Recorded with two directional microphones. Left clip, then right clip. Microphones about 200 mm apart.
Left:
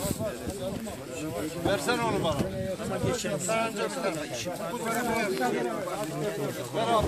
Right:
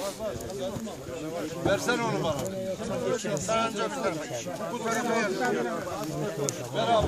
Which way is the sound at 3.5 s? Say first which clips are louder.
Right 2 dB; 5° right (ahead or behind).